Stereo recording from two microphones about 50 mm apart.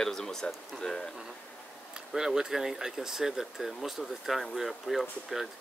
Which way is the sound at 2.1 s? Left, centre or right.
Centre.